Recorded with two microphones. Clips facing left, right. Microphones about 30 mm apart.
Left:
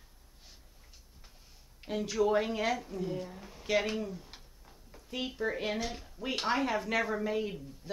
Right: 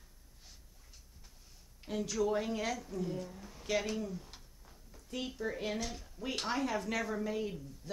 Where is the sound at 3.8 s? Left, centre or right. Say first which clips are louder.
Left 3 dB; left.